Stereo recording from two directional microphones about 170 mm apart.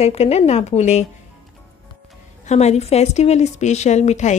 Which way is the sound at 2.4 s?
40° left (ahead or behind).